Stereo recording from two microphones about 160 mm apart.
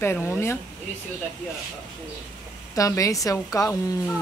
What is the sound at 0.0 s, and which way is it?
Speech, 15° left (ahead or behind).